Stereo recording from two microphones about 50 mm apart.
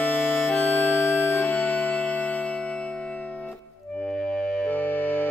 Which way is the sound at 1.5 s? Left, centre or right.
Left.